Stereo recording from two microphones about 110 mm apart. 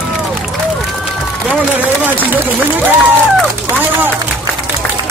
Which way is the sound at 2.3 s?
15° right (ahead or behind).